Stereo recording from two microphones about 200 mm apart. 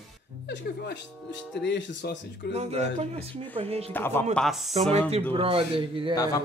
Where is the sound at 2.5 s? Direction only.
30° right (ahead or behind).